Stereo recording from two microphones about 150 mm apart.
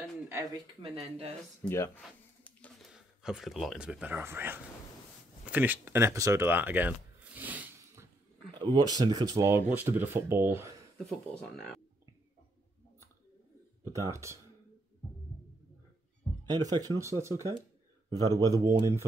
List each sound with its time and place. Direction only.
0.8 s speech: 40° right (ahead or behind)
1.7 s a sound: 15° left (ahead or behind)
2.9 s speech: 5° right (ahead or behind)
8.5 s speech: 30° right (ahead or behind)
9.7 s speech: 10° right (ahead or behind)
11.5 s speech: centre (ahead or behind)
13.9 s speech: 20° right (ahead or behind)
16.4 s speech: 25° right (ahead or behind)